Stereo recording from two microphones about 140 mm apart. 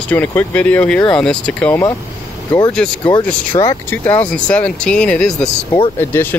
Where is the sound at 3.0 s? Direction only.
35° left (ahead or behind).